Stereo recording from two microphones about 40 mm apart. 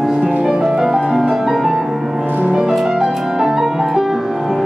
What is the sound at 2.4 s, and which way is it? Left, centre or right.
Music, right.